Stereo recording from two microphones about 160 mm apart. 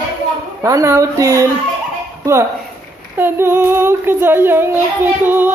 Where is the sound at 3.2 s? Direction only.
15° right (ahead or behind).